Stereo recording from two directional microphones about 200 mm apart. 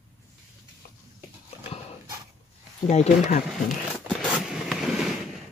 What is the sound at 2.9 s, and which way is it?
Speech, 35° left (ahead or behind).